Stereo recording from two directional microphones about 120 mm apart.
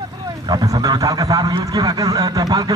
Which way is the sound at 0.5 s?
35° right (ahead or behind).